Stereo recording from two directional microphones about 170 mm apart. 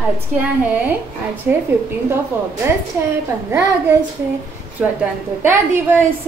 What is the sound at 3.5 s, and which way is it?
Speech, 15° right (ahead or behind).